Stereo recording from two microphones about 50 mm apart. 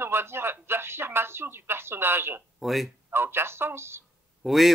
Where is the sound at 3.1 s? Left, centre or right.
Right.